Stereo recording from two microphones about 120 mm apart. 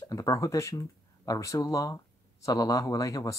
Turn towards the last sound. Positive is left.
turn(degrees=30)  # may be behind; listen again after turning